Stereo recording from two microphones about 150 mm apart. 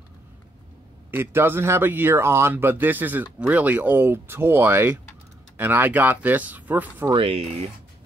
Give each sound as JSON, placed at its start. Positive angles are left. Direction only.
{"t": 1.1, "sound": "speech", "side_deg": -15}
{"t": 7.2, "sound": "speech", "side_deg": -40}